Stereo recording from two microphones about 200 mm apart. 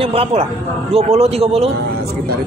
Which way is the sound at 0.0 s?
30° right (ahead or behind).